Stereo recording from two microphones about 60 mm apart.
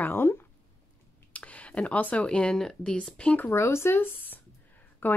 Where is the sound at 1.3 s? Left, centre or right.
Left.